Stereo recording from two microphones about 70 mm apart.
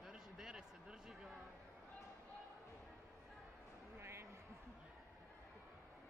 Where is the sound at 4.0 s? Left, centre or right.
Right.